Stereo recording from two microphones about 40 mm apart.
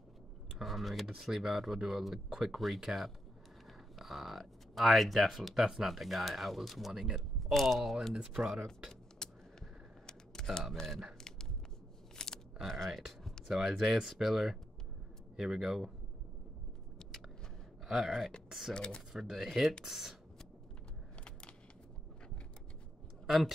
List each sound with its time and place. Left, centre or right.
0.6 s speech: centre
6.9 s speech: centre
7.3 s speech: centre
9.2 s typing: centre
10.7 s speech: centre
11.1 s a sound: centre
13.5 s speech: centre
17.8 s speech: centre
18.7 s speech: centre
19.1 s speech: centre
21.2 s a sound: left